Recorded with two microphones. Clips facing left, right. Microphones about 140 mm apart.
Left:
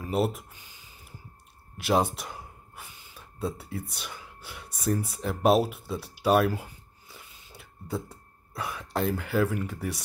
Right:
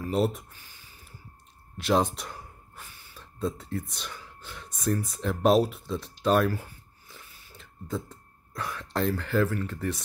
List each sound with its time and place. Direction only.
0.1 s speech: centre (ahead or behind)
0.5 s a sound: 15° left (ahead or behind)
1.8 s speech: 5° left (ahead or behind)